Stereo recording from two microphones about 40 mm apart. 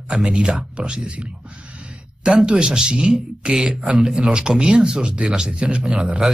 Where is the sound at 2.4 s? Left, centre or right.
Right.